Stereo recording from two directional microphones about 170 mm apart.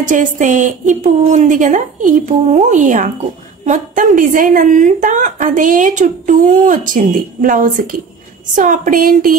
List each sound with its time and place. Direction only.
0.0 s a woman's voice: 50° right (ahead or behind)